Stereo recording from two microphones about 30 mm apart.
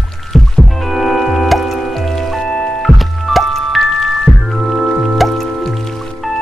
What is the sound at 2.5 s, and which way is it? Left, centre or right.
Music, left.